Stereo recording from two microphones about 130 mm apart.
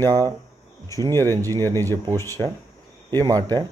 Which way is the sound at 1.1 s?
20° left (ahead or behind).